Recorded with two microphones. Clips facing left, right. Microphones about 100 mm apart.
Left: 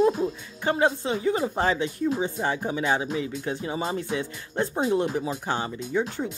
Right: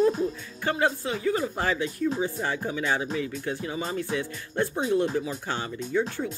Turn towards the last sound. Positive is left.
turn(degrees=20)  # may be behind; listen again after turning